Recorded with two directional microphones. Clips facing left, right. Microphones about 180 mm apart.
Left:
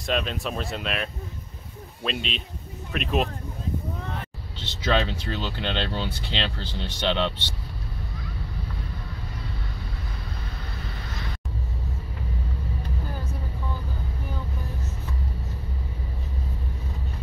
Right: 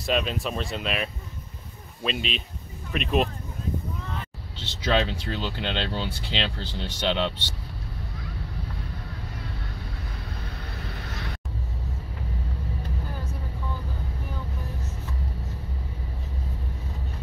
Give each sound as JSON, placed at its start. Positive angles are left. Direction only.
{"t": 0.0, "sound": "speech", "side_deg": 0}
{"t": 4.0, "sound": "a sound", "side_deg": 55}
{"t": 4.8, "sound": "speech", "side_deg": -10}